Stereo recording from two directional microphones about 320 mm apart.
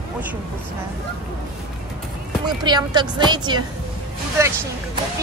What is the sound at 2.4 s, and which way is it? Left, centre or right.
Speech, centre.